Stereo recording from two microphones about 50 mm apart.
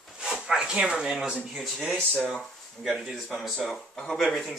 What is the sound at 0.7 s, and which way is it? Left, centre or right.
Speech, centre.